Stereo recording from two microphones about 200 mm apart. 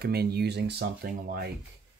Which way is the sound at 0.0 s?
50° right (ahead or behind).